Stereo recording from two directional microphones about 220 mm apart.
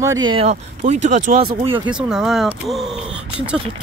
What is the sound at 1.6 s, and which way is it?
Speech, 20° right (ahead or behind).